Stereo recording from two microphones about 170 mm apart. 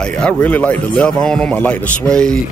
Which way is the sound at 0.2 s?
10° left (ahead or behind).